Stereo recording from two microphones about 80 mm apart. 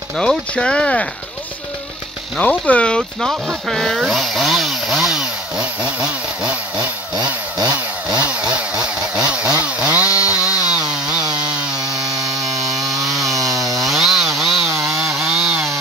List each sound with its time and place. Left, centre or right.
0.2 s speech: centre
2.4 s speech: centre
3.0 s speech: centre
4.0 s chainsaw: centre
7.5 s chainsaw: right
8.1 s chainsaw: centre
12.0 s a sound: right
13.0 s chainsaw: centre